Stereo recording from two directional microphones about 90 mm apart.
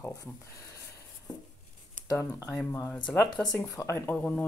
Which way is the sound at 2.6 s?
30° left (ahead or behind).